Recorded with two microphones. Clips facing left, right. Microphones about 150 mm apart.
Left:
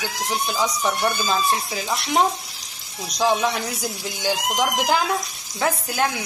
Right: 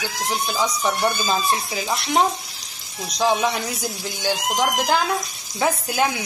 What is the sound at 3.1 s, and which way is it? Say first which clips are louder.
Speech: even; centre (ahead or behind).